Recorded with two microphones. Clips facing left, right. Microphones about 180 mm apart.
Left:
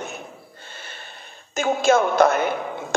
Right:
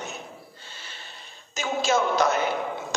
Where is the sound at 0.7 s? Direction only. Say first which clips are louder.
Left 4 dB; 55° left (ahead or behind).